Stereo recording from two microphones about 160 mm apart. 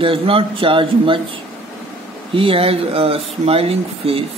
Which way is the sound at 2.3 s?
35° right (ahead or behind).